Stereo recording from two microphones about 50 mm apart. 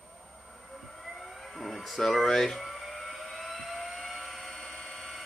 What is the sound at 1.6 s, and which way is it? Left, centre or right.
Speech, centre.